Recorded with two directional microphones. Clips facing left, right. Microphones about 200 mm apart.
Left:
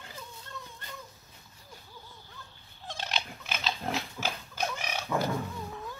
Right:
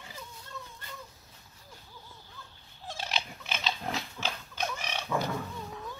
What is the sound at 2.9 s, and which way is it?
Dog, 5° right (ahead or behind).